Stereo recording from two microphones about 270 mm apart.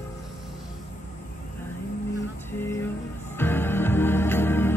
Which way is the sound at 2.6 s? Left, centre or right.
Centre.